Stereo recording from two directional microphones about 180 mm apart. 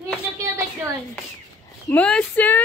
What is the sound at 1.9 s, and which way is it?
Speech, 5° left (ahead or behind).